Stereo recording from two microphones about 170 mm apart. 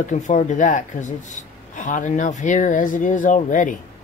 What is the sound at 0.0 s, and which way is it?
A man's voice, 45° left (ahead or behind).